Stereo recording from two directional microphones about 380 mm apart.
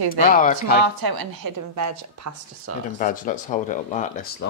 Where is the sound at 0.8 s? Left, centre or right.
Right.